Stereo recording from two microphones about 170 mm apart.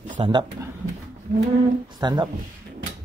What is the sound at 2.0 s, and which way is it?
Speech, 25° right (ahead or behind).